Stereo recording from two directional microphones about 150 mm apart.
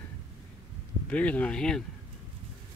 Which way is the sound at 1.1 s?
10° left (ahead or behind).